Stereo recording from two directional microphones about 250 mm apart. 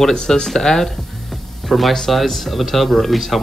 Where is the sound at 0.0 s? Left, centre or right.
Centre.